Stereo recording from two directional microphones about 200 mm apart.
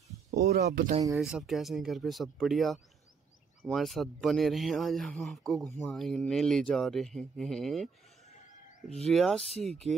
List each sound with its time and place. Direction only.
0.3 s speech: 50° right (ahead or behind)
1.1 s speech: centre (ahead or behind)